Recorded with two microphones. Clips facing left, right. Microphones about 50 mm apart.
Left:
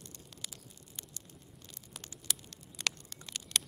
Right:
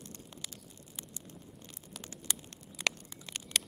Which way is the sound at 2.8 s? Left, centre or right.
Centre.